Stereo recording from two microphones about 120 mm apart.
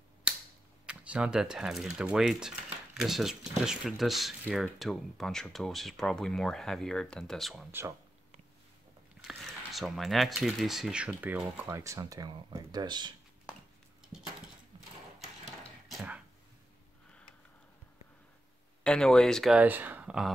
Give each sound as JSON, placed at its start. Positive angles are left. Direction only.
{"t": 0.8, "sound": "speech", "side_deg": -10}
{"t": 9.3, "sound": "speech", "side_deg": 0}
{"t": 11.6, "sound": "speech", "side_deg": -25}
{"t": 15.9, "sound": "a sound", "side_deg": -5}
{"t": 18.9, "sound": "speech", "side_deg": 5}
{"t": 19.5, "sound": "speech", "side_deg": -15}